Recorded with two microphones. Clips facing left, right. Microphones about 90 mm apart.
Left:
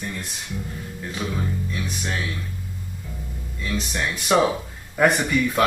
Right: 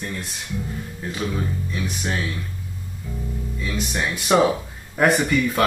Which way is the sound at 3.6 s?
5° right (ahead or behind).